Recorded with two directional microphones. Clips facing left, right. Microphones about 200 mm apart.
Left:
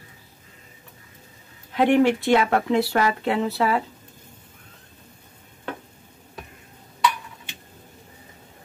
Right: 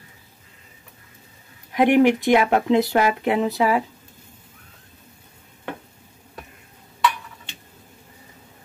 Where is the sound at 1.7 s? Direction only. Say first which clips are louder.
Right 2 dB; 15° right (ahead or behind).